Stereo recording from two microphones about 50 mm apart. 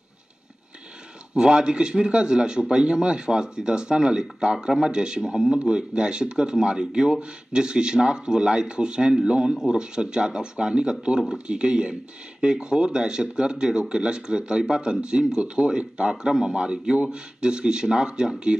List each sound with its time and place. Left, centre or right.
1.3 s speech: centre